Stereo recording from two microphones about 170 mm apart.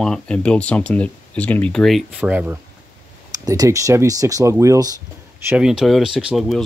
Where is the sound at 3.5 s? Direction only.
20° right (ahead or behind).